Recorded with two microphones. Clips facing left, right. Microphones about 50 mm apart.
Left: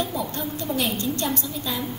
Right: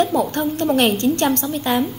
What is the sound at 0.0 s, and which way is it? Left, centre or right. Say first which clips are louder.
A woman's voice: right 9 dB; right.